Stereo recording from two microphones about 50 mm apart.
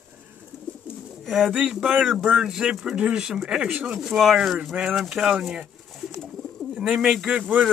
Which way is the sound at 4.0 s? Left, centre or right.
Centre.